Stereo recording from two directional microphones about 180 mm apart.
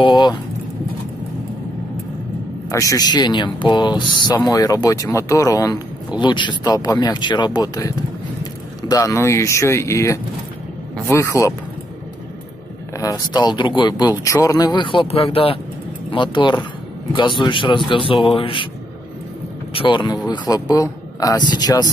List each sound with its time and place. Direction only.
0.0 s speech: 25° left (ahead or behind)
2.7 s speech: 20° left (ahead or behind)
12.9 s speech: 20° left (ahead or behind)
19.7 s speech: 30° left (ahead or behind)